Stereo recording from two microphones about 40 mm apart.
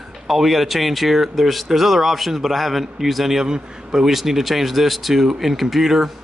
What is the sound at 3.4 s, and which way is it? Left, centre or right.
Speech, centre.